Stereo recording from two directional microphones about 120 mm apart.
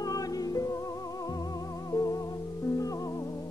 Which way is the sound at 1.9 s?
30° left (ahead or behind).